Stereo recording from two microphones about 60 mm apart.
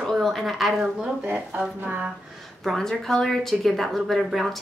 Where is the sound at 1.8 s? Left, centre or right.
Right.